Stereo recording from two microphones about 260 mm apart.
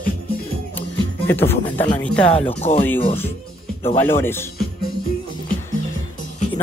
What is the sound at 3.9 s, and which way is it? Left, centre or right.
Speech, centre.